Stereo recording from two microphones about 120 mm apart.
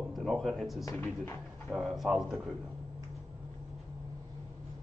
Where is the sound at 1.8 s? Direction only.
Centre (ahead or behind).